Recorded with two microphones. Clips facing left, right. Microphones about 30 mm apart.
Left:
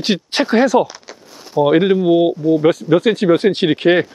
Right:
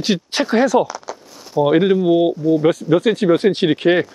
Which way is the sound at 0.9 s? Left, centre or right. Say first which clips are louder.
Right 6 dB; left.